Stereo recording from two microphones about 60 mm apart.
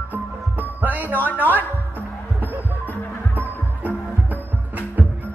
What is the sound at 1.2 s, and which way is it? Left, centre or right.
Speech, left.